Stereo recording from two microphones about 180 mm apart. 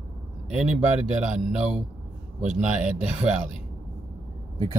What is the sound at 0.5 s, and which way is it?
Speech, 5° right (ahead or behind).